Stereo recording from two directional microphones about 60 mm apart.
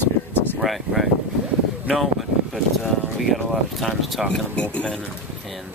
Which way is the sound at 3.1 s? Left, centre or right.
Centre.